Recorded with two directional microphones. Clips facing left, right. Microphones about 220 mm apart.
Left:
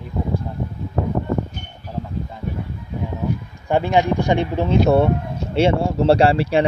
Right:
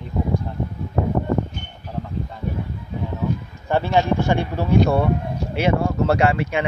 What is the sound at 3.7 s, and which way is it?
Speech, 15° left (ahead or behind).